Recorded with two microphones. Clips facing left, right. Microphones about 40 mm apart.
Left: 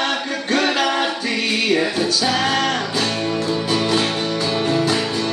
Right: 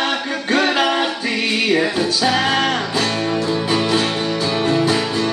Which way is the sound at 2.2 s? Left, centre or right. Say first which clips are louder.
Right 3 dB; centre.